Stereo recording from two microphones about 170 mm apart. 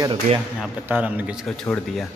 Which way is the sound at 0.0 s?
30° right (ahead or behind).